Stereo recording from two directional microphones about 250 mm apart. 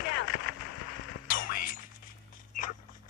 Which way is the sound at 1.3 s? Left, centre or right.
Left.